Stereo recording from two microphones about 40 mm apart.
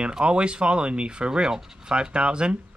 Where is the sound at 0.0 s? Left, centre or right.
Right.